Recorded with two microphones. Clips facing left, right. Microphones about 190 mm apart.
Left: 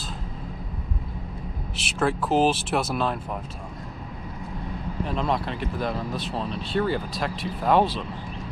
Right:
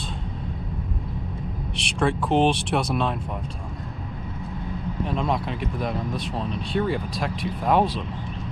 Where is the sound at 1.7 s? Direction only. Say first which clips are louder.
Right 1 dB; centre (ahead or behind).